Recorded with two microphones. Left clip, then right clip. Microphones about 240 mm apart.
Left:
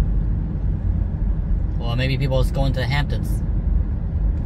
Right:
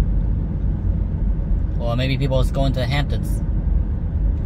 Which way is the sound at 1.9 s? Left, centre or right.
Centre.